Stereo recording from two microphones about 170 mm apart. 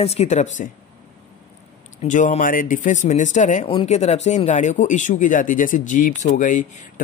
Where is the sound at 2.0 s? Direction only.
45° left (ahead or behind).